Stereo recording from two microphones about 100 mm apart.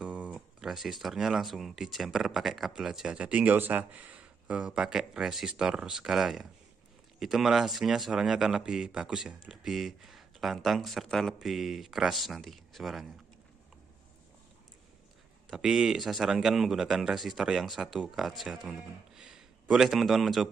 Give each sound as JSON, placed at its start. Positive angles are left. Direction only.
{"t": 0.0, "sound": "speech", "side_deg": -10}
{"t": 15.5, "sound": "speech", "side_deg": -5}